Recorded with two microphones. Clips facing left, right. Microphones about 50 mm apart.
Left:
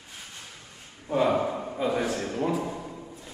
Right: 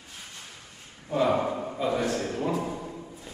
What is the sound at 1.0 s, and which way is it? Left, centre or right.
Speech, centre.